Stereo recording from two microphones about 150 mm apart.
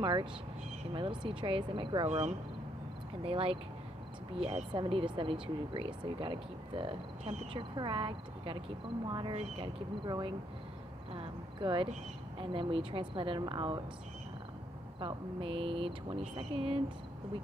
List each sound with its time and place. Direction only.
0.0 s speech: 30° right (ahead or behind)
2.0 s speech: 50° right (ahead or behind)
3.3 s speech: 40° right (ahead or behind)
9.3 s speech: 45° right (ahead or behind)
10.0 s speech: 30° right (ahead or behind)
15.0 s speech: 35° right (ahead or behind)